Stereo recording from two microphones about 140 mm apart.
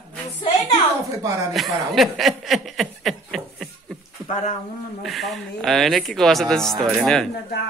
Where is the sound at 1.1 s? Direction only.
20° right (ahead or behind).